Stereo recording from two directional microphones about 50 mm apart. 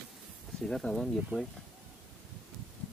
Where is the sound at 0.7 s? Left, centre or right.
Centre.